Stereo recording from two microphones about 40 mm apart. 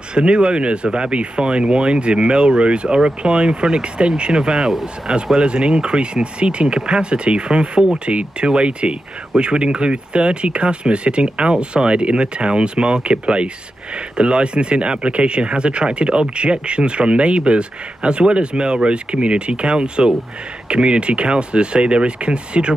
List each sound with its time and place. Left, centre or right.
0.1 s speech: right